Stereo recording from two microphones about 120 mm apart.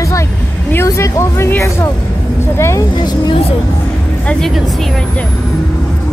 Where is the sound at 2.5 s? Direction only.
20° left (ahead or behind).